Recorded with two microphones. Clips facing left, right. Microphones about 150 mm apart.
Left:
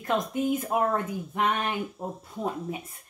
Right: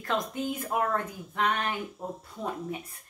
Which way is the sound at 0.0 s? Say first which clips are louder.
Left 4 dB; 20° left (ahead or behind).